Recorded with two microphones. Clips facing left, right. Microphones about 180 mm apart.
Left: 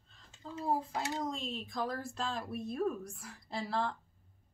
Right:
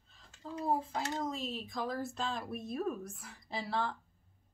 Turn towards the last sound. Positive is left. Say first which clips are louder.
# left 1 dB
turn(degrees=0)  # may be behind; listen again after turning